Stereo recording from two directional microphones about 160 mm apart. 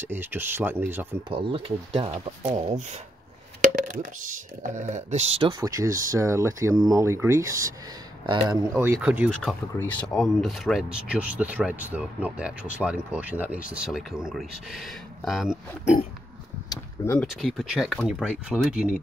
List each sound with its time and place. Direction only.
0.1 s speech: 15° right (ahead or behind)
1.3 s speech: 35° right (ahead or behind)
3.6 s speech: 55° right (ahead or behind)
4.9 s speech: 35° right (ahead or behind)
5.6 s speech: 20° right (ahead or behind)
8.7 s speech: 10° right (ahead or behind)
9.8 s speech: 5° left (ahead or behind)
16.6 s a sound: 15° left (ahead or behind)
17.3 s speech: centre (ahead or behind)